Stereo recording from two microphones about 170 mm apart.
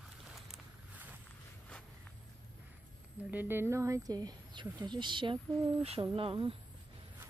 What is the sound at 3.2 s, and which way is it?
Speech, 10° right (ahead or behind).